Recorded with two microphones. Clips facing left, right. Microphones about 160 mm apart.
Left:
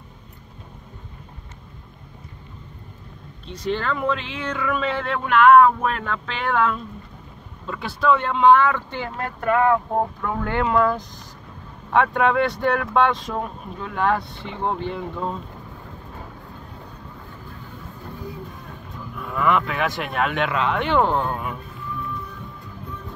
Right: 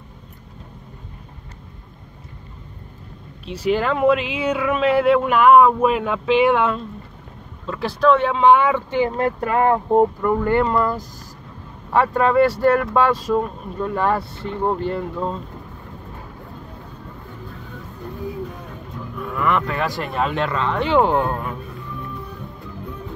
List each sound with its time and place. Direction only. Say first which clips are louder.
3.5 s speech: right 5 dB; 10° right (ahead or behind)
9.1 s speech: right 2 dB; 30° right (ahead or behind)
10.2 s speech: right 6 dB; 5° right (ahead or behind)
19.4 s speech: even; centre (ahead or behind)
20.9 s speech: right 5 dB; 10° right (ahead or behind)